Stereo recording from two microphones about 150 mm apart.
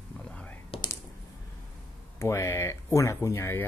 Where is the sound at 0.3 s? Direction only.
10° left (ahead or behind).